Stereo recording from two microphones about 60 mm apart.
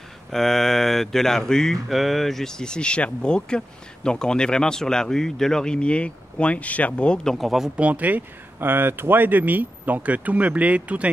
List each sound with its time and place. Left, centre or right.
0.3 s speech: centre; by 7.2 s left
7.2 s speech: centre
7.7 s speech: right